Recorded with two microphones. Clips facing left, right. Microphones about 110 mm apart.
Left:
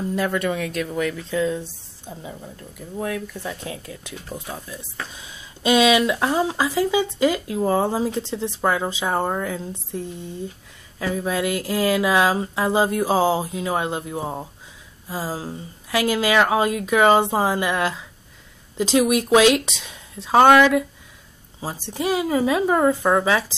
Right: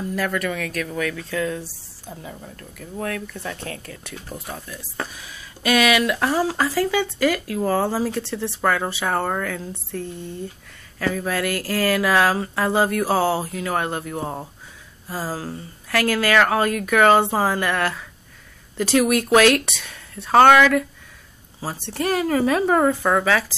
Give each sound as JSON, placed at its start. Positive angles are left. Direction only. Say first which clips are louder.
{"t": 0.1, "sound": "speech", "louder": "left 2 dB", "side_deg": 20}
{"t": 21.9, "sound": "speech", "louder": "even", "side_deg": 15}